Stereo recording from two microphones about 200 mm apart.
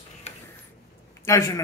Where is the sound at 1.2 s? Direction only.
15° left (ahead or behind).